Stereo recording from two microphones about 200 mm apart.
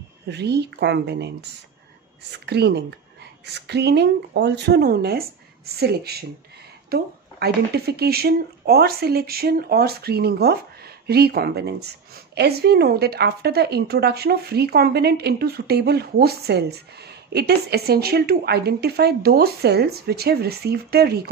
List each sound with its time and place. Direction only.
0.3 s speech: 55° right (ahead or behind)